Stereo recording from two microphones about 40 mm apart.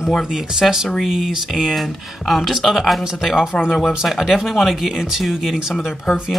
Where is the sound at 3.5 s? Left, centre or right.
Left.